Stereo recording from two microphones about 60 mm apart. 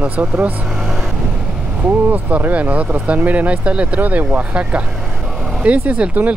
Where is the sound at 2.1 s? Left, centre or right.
Right.